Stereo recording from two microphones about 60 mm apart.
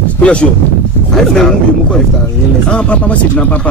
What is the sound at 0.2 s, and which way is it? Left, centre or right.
Speech, centre.